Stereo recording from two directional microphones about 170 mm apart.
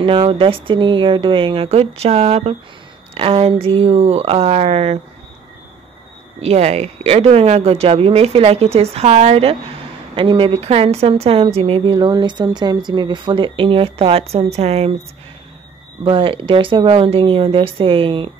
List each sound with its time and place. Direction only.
0.0 s a woman's voice: 30° right (ahead or behind)
6.4 s a woman's voice: 40° right (ahead or behind)
16.0 s a woman's voice: 30° right (ahead or behind)